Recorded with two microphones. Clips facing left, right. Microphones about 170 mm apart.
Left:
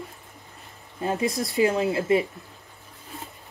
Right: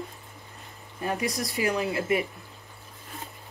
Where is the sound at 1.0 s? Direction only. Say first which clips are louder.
Left 4 dB; 25° left (ahead or behind).